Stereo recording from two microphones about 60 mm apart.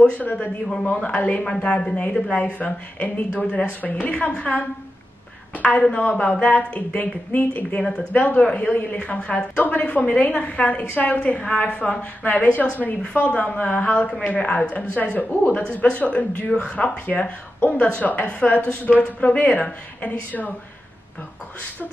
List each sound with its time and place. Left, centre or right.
0.2 s a woman's voice: left